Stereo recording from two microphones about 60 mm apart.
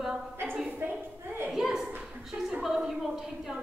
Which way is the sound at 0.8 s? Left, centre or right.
Right.